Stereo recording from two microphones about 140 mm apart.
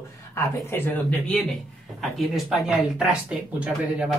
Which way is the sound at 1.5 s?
Centre (ahead or behind).